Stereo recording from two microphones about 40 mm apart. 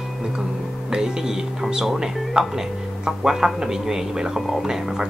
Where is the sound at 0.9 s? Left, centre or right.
Centre.